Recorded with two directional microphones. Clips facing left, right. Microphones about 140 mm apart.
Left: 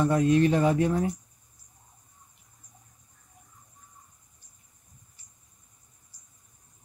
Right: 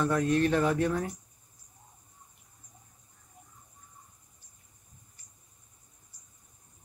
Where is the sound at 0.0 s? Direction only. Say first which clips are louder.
Left 4 dB; 15° left (ahead or behind).